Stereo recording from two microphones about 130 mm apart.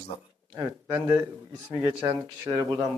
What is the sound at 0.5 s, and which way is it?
A man's voice, 25° right (ahead or behind).